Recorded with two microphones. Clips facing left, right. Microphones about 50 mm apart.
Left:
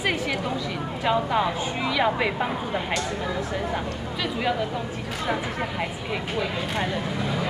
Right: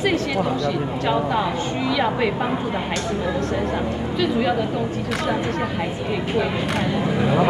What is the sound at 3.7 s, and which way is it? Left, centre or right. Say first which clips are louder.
Speech: right 5 dB; centre.